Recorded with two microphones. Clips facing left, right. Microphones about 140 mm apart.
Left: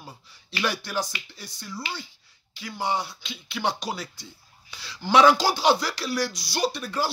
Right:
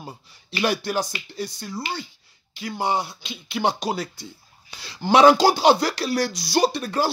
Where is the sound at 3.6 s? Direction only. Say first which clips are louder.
Right 4 dB; 20° right (ahead or behind).